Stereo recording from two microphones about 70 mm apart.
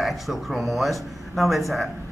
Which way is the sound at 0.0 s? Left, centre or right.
Centre.